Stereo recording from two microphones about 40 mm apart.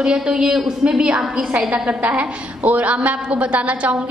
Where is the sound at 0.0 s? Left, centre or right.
Right.